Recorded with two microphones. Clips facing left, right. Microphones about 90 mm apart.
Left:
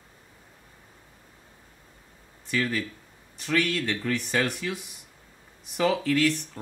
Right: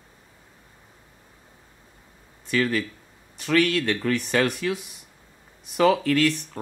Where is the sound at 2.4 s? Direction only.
75° right (ahead or behind).